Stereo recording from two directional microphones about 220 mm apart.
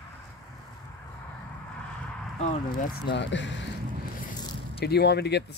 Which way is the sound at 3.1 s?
55° left (ahead or behind).